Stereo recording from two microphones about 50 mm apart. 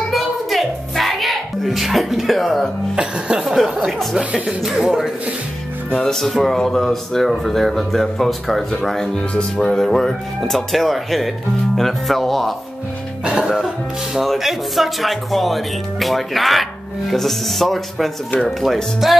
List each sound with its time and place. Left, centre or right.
0.1 s music: centre
3.0 s speech: centre
3.4 s speech: centre
4.2 s speech: right
4.6 s speech: centre
5.9 s speech: centre
9.3 s speech: left
9.7 s speech: centre
13.4 s speech: centre